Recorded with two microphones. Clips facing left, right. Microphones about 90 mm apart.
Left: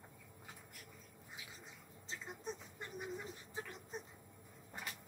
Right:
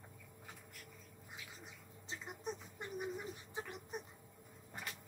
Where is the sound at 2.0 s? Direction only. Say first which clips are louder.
Right 1 dB; 15° right (ahead or behind).